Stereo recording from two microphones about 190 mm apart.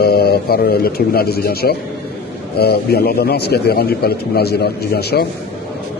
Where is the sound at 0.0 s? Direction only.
55° left (ahead or behind).